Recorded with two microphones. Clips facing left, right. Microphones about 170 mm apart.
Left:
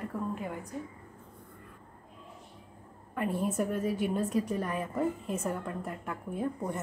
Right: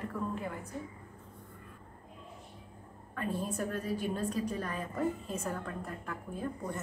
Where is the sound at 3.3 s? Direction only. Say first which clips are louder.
Left 6 dB; 20° left (ahead or behind).